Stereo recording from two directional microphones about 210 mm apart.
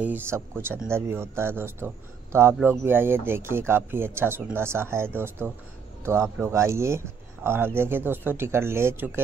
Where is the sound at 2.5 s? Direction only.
Centre (ahead or behind).